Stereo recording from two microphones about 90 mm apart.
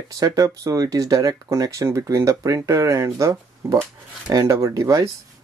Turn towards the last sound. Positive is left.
turn(degrees=-40)  # may be behind; listen again after turning